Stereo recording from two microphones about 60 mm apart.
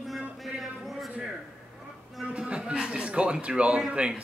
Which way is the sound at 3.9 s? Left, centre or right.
Centre.